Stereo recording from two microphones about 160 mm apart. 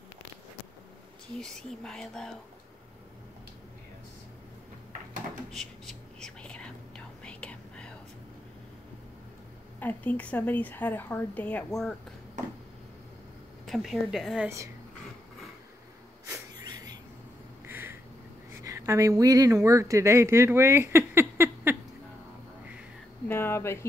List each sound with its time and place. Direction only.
1.4 s speech: 5° left (ahead or behind)
5.5 s whispering: 5° left (ahead or behind)
9.8 s a woman's voice: 10° left (ahead or behind)
13.7 s speech: centre (ahead or behind)
16.6 s a sound: 25° right (ahead or behind)
17.6 s a sound: 15° right (ahead or behind)
18.6 s speech: 20° right (ahead or behind)
23.2 s a woman's voice: 15° left (ahead or behind)